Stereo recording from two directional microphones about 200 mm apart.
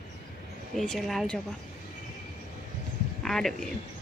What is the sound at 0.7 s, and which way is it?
Speech, centre (ahead or behind).